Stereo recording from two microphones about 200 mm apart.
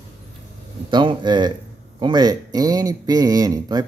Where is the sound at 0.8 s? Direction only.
25° right (ahead or behind).